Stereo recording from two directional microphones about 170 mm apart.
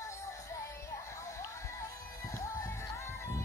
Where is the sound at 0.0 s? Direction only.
15° left (ahead or behind).